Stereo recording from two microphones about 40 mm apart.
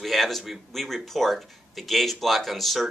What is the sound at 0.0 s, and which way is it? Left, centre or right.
Speech, centre.